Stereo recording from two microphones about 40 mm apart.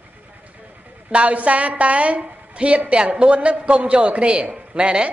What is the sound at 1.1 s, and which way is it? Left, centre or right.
A woman's voice, right.